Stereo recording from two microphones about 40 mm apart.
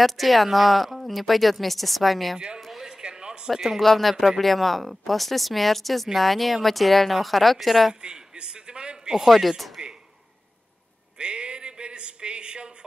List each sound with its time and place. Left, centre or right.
0.0 s a woman's voice: centre
2.3 s a man's voice: right
2.6 s a sound: centre
3.0 s a sound: right
3.4 s speech: centre
3.8 s a woman's voice: centre
8.0 s a man's voice: right
9.2 s a woman's voice: centre
11.1 s a sound: right